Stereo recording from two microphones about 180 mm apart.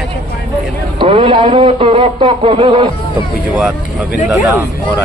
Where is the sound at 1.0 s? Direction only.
30° right (ahead or behind).